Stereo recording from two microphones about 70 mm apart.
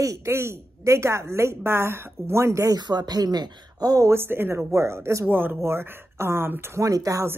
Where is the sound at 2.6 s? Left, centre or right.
Right.